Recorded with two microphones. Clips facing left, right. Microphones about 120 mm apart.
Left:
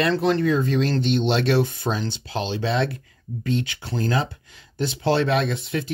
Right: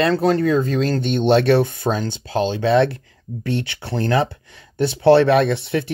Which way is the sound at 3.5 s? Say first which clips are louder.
Right 4 dB; 65° right (ahead or behind).